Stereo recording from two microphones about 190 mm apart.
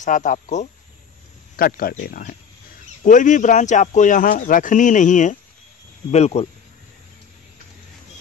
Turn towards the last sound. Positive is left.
turn(degrees=35)  # may be behind; listen again after turning